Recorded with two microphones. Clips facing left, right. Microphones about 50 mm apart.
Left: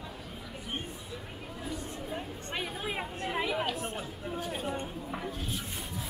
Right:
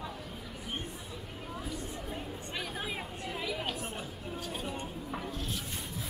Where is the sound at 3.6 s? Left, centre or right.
Centre.